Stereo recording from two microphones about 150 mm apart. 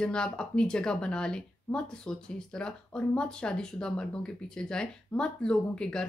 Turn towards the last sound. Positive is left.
turn(degrees=5)  # may be behind; listen again after turning